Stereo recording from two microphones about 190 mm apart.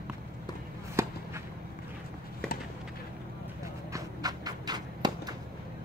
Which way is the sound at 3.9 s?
20° right (ahead or behind).